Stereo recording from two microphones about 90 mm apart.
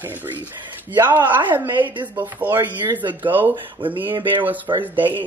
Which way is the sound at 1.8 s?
60° right (ahead or behind).